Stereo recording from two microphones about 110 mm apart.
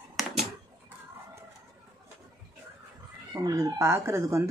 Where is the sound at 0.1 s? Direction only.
Centre (ahead or behind).